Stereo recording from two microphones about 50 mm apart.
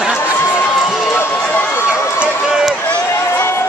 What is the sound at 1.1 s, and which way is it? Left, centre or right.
Run, left.